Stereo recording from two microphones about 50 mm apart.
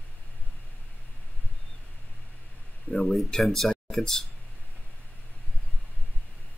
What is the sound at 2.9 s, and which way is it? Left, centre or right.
Speech, centre.